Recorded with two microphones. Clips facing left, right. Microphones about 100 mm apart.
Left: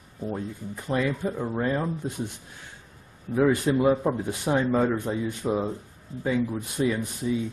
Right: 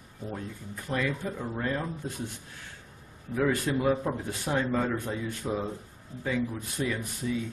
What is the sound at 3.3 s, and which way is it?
Speech, 20° left (ahead or behind).